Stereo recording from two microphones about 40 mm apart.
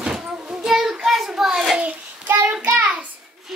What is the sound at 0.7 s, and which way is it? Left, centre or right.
Child singing, centre.